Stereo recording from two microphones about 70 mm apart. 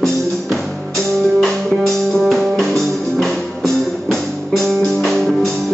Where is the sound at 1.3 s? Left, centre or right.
Centre.